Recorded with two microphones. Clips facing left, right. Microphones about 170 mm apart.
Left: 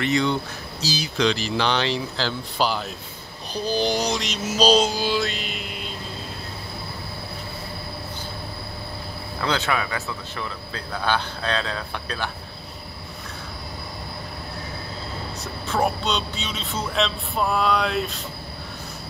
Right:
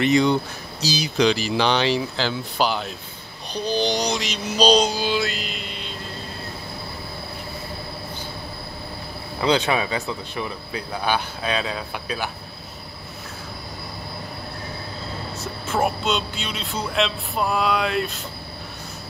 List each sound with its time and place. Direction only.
0.0 s speech: 15° right (ahead or behind); by 5.8 s 5° left (ahead or behind)
9.4 s speech: 15° right (ahead or behind)
15.7 s speech: 5° right (ahead or behind)